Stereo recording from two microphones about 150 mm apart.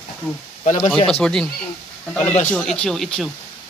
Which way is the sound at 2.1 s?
10° left (ahead or behind).